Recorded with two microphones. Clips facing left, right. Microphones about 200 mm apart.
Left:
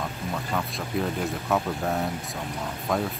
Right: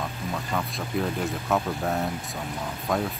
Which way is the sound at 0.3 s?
Centre (ahead or behind).